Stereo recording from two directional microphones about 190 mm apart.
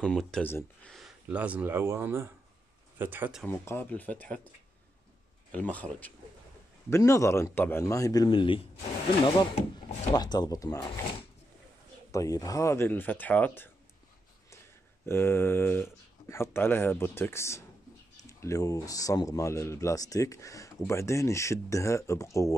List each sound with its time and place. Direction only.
0.0 s speech: 5° left (ahead or behind)
0.9 s speech: 5° right (ahead or behind)
3.4 s speech: 10° left (ahead or behind)
5.5 s speech: 10° left (ahead or behind)
12.1 s speech: 15° left (ahead or behind)
15.0 s speech: 10° left (ahead or behind)